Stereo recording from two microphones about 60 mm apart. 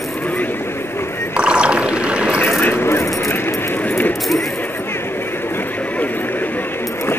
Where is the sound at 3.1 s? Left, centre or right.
Left.